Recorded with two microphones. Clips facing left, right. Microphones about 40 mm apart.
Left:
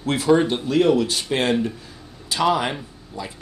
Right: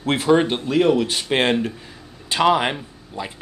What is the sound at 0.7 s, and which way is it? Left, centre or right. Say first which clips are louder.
Speech: even; centre.